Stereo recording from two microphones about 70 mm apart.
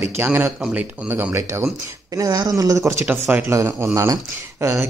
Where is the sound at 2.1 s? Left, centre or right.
Right.